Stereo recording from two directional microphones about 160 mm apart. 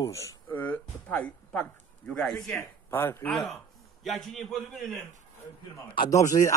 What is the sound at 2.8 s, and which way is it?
Speech, 15° left (ahead or behind).